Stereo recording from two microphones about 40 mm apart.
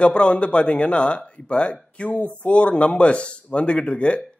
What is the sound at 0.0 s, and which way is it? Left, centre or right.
Speech, left.